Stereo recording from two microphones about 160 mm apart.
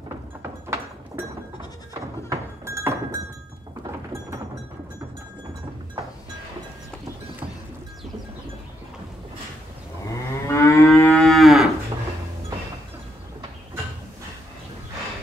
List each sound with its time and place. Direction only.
0.4 s a sound: 15° right (ahead or behind)
2.0 s thunk: 20° right (ahead or behind)
10.5 s moo: 15° left (ahead or behind)
11.1 s moo: centre (ahead or behind)